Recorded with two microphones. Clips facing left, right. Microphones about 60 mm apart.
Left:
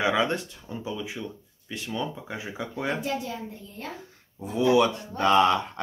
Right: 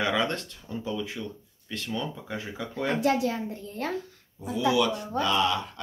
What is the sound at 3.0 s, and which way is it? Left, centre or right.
Speech, right.